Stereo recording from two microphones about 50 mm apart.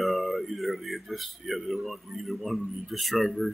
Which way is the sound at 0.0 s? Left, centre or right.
Centre.